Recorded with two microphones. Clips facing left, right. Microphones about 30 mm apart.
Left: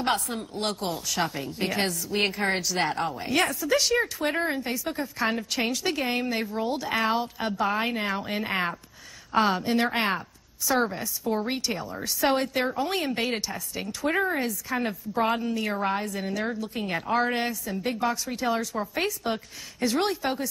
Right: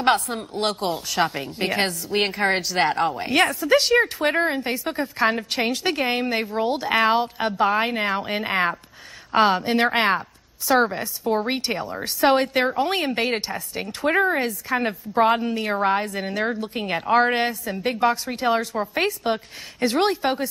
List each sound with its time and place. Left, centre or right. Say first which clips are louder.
0.0 s a woman's voice: right 7 dB; right
0.4 s a woman's voice: right 5 dB; right
9.3 s a woman's voice: right 5 dB; right